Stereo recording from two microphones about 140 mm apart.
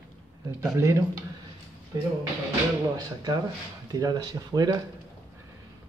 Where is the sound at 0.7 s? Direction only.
20° right (ahead or behind).